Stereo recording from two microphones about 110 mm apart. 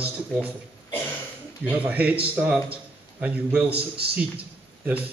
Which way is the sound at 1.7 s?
15° right (ahead or behind).